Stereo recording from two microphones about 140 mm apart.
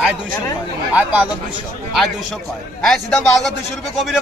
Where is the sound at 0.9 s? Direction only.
10° right (ahead or behind).